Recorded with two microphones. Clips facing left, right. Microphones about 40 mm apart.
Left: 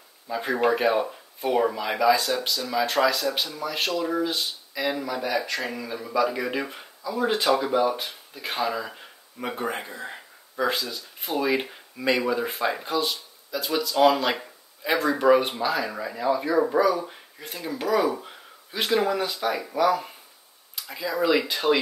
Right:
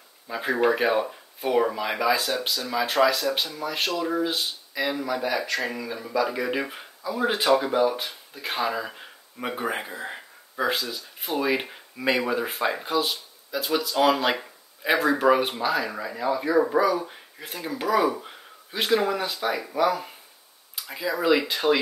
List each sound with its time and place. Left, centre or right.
0.3 s speech: centre
18.0 s a sound: centre
19.0 s speech: centre